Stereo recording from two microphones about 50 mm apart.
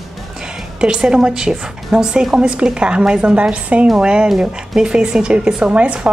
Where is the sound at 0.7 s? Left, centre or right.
Centre.